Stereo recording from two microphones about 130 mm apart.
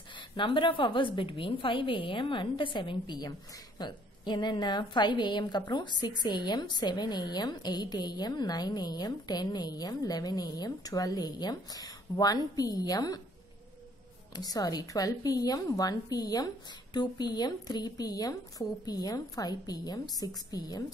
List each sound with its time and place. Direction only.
0.4 s a woman's voice: 40° left (ahead or behind)
14.3 s a woman's voice: 30° left (ahead or behind)